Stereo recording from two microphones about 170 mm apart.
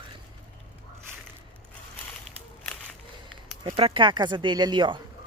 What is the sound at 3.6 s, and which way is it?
Speech, 30° right (ahead or behind).